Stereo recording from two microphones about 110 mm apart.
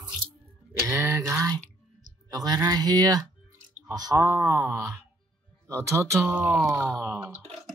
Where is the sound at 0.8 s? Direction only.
30° right (ahead or behind).